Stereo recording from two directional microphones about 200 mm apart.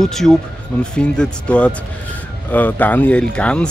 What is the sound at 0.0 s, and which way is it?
Speech, centre (ahead or behind).